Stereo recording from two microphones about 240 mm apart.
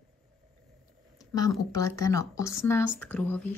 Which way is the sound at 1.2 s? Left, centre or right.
Centre.